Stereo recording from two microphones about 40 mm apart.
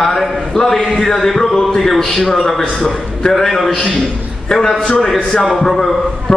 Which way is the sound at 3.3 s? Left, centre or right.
Centre.